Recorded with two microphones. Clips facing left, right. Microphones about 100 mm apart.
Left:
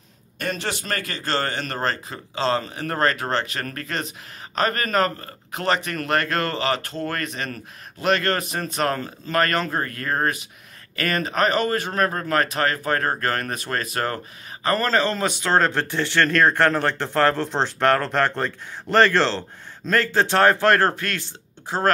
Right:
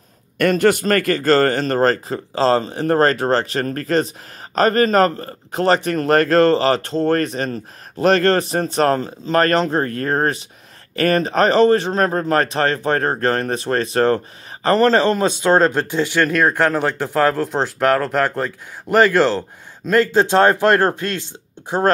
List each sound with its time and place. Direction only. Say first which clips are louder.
0.4 s a man's voice: right 13 dB; 55° right (ahead or behind); by 21.9 s 20° right (ahead or behind)